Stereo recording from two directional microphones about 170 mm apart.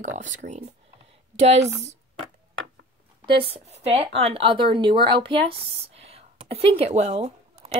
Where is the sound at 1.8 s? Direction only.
40° right (ahead or behind).